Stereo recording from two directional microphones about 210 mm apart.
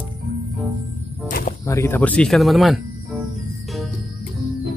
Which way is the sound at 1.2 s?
40° left (ahead or behind).